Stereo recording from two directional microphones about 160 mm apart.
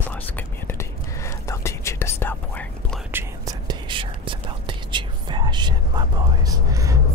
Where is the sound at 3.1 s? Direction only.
25° right (ahead or behind).